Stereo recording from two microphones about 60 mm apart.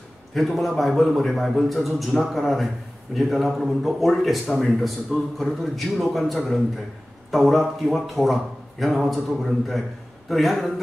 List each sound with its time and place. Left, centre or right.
0.3 s a man's voice: centre